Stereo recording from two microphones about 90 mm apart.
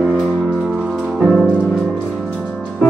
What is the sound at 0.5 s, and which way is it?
Music, centre (ahead or behind).